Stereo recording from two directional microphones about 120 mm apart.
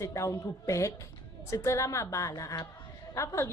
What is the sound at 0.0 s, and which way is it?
A woman's voice, 25° left (ahead or behind).